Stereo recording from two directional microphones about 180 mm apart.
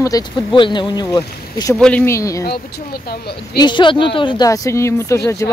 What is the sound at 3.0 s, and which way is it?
Speech, 60° left (ahead or behind).